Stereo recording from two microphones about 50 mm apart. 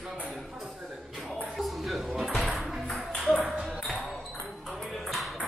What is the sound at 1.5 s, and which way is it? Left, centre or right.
Music, centre.